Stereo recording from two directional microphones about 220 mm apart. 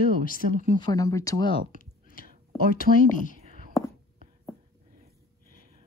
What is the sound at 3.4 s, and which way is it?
Whispering, 35° right (ahead or behind).